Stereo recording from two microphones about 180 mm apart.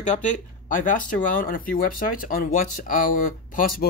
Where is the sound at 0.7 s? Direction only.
50° left (ahead or behind).